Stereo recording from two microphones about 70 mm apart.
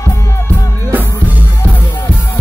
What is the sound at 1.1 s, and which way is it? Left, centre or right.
Music, right.